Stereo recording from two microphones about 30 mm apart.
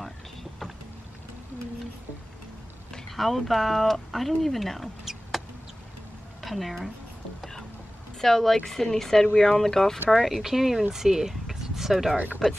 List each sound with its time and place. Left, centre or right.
0.0 s vehicle: centre
3.1 s speech: centre
6.4 s speech: centre
8.2 s speech: centre
10.1 s speech: centre
11.6 s a sound: centre
12.4 s speech: left